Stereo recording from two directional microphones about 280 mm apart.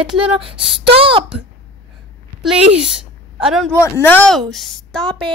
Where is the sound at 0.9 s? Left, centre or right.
Centre.